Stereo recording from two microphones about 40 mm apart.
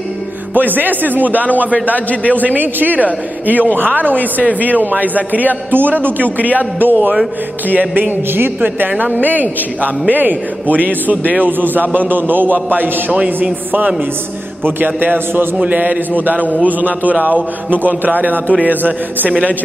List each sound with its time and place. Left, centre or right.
0.6 s speech: right
1.7 s a man's voice: left
2.4 s speech: right
14.6 s speech: right
15.6 s a man's voice: right